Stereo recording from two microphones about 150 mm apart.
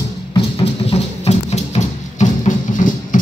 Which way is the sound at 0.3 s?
35° left (ahead or behind).